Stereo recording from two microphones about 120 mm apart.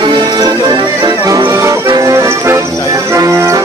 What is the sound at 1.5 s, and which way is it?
Music, 25° right (ahead or behind).